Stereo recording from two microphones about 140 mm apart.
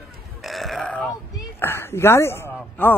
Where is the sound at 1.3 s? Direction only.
15° left (ahead or behind).